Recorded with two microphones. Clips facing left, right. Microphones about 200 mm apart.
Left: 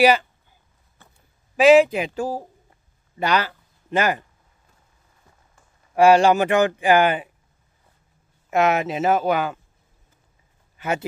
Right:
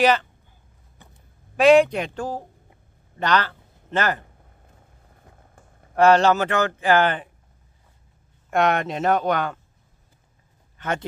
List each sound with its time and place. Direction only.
0.0 s speech: 10° left (ahead or behind)
1.0 s a sound: 15° right (ahead or behind)
1.6 s speech: 5° left (ahead or behind)
4.2 s a sound: 55° right (ahead or behind)
5.9 s speech: 10° left (ahead or behind)
8.5 s speech: 5° left (ahead or behind)
10.8 s speech: 10° left (ahead or behind)